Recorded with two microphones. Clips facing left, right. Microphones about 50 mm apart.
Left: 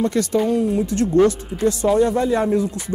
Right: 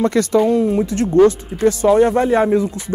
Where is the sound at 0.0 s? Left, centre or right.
Right.